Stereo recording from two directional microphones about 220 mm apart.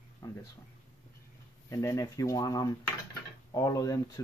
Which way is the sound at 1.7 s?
15° left (ahead or behind).